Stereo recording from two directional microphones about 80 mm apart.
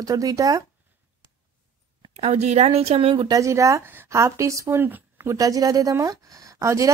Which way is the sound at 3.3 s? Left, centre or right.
Right.